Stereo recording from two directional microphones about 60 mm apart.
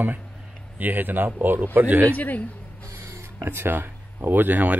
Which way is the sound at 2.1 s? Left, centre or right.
Left.